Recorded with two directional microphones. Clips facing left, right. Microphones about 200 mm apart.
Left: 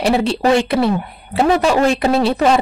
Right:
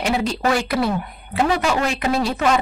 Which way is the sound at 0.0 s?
30° left (ahead or behind).